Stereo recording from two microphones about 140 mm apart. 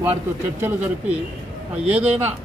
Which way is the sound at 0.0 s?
15° right (ahead or behind).